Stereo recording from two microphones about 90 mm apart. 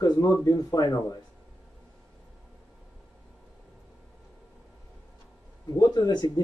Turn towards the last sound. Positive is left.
turn(degrees=50)  # may be behind; listen again after turning